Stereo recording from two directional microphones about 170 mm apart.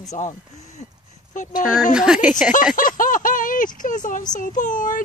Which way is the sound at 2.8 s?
55° left (ahead or behind).